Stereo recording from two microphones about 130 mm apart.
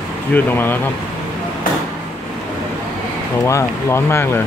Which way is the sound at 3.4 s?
20° left (ahead or behind).